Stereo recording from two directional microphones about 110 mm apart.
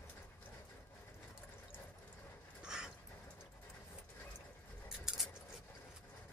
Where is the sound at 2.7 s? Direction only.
5° right (ahead or behind).